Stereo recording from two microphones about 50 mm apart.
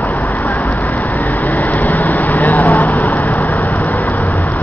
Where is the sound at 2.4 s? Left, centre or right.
Left.